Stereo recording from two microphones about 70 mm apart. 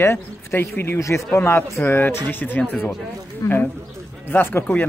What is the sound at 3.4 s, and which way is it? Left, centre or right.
Speech, left.